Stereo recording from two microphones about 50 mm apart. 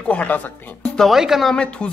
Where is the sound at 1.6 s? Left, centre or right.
Left.